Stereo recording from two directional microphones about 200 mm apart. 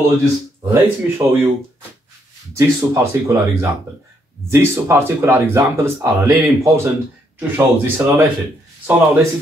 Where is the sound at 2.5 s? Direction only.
15° right (ahead or behind).